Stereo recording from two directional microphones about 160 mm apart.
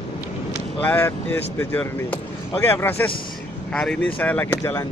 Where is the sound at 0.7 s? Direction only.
10° left (ahead or behind).